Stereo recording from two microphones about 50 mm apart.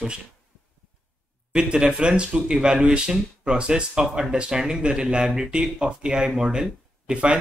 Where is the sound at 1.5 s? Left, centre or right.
Centre.